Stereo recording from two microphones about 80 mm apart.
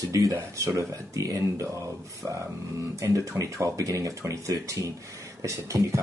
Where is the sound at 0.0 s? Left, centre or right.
Right.